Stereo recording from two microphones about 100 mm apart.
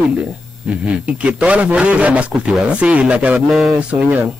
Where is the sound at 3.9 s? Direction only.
15° right (ahead or behind).